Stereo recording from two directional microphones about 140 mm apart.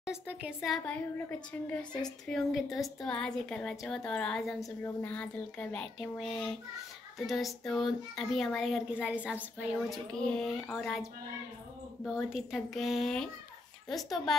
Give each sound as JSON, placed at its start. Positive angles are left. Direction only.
{"t": 0.0, "sound": "a woman's voice", "side_deg": -10}
{"t": 1.8, "sound": "a woman's voice", "side_deg": 30}
{"t": 2.0, "sound": "a woman's voice", "side_deg": 5}
{"t": 9.8, "sound": "a woman's voice", "side_deg": 5}